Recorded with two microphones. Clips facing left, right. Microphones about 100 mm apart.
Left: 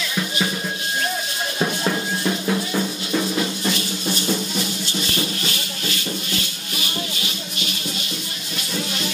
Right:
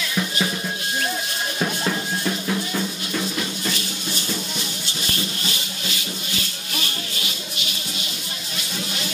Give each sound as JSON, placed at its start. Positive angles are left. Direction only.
{"t": 1.6, "sound": "music", "side_deg": 10}